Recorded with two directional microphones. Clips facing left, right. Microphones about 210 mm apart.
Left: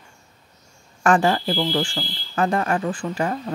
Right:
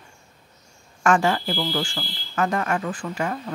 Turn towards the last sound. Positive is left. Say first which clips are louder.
# left 3 dB
turn(degrees=30)  # may be behind; listen again after turning